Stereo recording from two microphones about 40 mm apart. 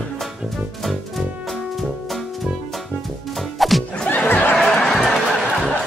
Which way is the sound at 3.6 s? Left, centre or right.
Centre.